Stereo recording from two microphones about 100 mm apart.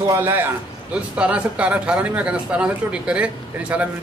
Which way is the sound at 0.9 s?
10° right (ahead or behind).